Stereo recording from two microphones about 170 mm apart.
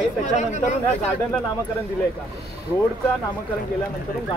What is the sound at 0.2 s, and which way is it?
Speech, 45° left (ahead or behind).